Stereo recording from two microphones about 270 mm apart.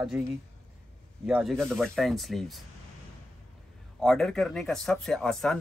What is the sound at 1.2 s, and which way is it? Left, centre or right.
A man's voice, centre.